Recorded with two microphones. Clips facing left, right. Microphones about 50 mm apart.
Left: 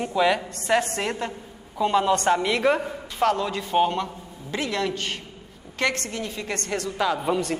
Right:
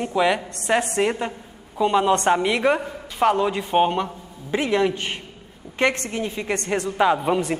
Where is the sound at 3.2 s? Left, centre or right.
Right.